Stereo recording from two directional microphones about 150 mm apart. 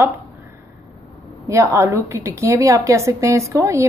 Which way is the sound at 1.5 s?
20° right (ahead or behind).